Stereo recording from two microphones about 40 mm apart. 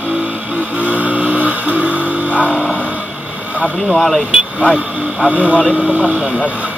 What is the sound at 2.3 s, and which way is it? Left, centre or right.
Music, left.